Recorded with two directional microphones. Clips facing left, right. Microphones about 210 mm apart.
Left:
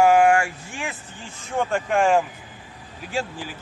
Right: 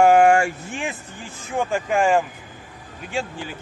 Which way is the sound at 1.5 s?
5° right (ahead or behind).